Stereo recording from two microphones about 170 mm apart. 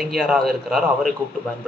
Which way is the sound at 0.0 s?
Centre (ahead or behind).